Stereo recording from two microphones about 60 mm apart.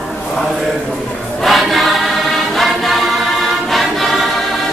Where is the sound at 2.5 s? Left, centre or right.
Centre.